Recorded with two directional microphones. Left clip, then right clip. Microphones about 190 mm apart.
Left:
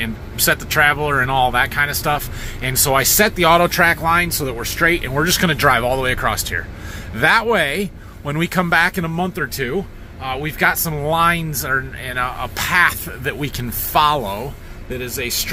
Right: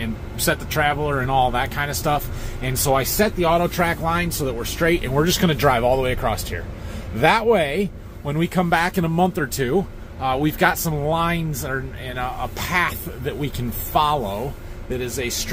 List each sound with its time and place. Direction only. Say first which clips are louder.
0.0 s speech: left 4 dB; 5° right (ahead or behind)
3.2 s speech: left 5 dB; 15° left (ahead or behind)
3.8 s speech: left 7 dB; 5° right (ahead or behind); by 10.7 s 30° right (ahead or behind)
10.7 s speech: left 3 dB; 20° right (ahead or behind)
11.0 s speech: left 5 dB; 5° right (ahead or behind)